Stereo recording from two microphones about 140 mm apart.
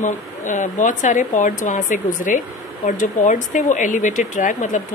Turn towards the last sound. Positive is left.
turn(degrees=65)  # may be behind; listen again after turning